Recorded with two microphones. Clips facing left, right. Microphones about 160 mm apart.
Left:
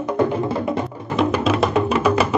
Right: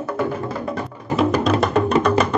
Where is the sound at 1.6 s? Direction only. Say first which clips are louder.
Even; 5° left (ahead or behind).